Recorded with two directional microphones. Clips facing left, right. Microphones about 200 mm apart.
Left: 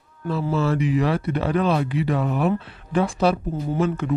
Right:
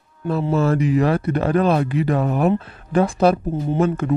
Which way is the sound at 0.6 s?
45° right (ahead or behind).